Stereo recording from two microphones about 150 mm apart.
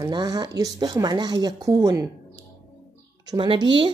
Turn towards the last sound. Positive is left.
turn(degrees=-35)  # may be behind; listen again after turning